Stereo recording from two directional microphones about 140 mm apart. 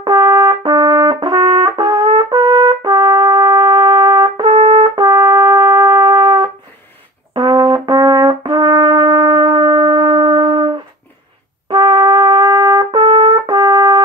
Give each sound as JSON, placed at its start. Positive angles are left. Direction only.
{"t": 0.0, "sound": "brass instrument", "side_deg": -30}
{"t": 11.7, "sound": "brass instrument", "side_deg": -30}